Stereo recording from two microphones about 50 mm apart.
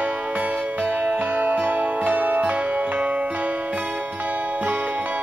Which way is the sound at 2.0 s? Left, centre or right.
Right.